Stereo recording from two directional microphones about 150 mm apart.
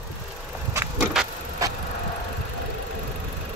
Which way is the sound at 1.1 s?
5° right (ahead or behind).